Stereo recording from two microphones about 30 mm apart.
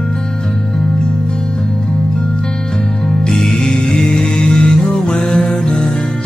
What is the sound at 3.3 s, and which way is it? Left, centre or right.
Music, centre.